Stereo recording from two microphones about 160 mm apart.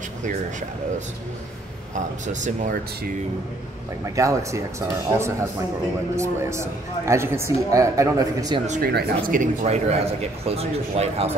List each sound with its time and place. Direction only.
0.2 s speech: 50° right (ahead or behind)
4.0 s speech: 20° right (ahead or behind)
8.6 s speech: 50° right (ahead or behind)